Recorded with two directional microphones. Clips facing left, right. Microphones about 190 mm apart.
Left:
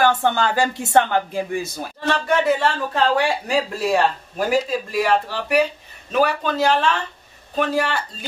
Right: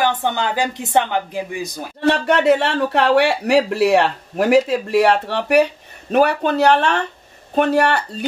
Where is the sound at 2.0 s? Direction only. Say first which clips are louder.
Right 4 dB; 65° right (ahead or behind).